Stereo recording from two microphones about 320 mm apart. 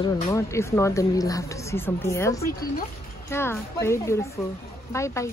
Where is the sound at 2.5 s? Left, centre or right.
Left.